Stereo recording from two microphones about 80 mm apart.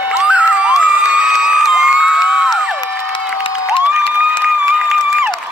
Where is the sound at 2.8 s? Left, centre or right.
Left.